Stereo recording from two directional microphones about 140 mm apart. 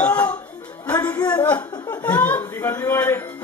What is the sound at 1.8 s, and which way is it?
Speech, 15° left (ahead or behind).